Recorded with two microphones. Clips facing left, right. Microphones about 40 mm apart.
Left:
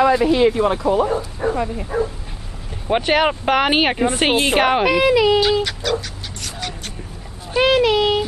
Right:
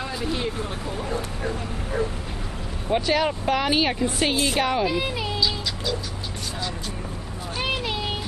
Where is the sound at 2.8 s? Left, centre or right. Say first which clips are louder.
Left 5 dB; left.